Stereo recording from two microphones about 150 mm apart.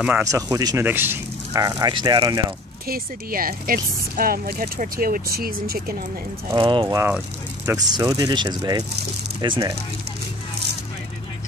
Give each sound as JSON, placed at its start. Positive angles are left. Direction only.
{"t": 0.2, "sound": "speech", "side_deg": -20}
{"t": 2.9, "sound": "speech", "side_deg": -75}
{"t": 6.5, "sound": "speech", "side_deg": -30}